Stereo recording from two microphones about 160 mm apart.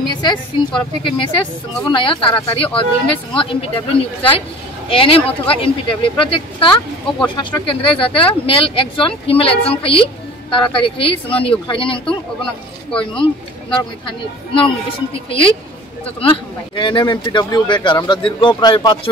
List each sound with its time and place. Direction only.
0.2 s speech: 30° left (ahead or behind)
16.2 s speech: 35° left (ahead or behind)